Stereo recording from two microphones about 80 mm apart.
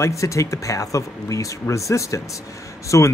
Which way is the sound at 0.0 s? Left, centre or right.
Left.